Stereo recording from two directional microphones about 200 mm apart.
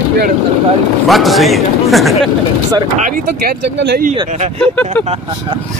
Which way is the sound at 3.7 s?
60° right (ahead or behind).